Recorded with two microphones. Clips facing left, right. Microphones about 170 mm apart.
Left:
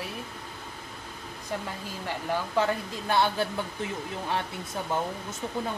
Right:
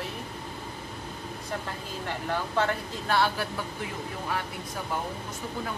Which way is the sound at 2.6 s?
20° left (ahead or behind).